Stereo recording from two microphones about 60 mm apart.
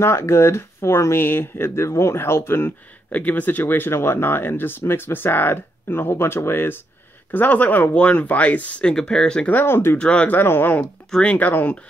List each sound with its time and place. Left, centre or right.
0.0 s speech: left
3.1 s speech: left
9.0 s speech: centre
9.5 s speech: left
9.9 s speech: centre
10.3 s speech: left
11.1 s speech: centre
11.3 s speech: left